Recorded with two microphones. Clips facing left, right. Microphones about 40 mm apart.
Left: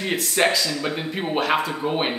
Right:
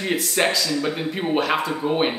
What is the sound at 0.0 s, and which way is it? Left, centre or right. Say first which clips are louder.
Speech: even; centre.